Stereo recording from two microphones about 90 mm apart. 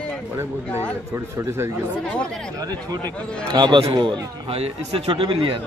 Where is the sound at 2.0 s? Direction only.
10° left (ahead or behind).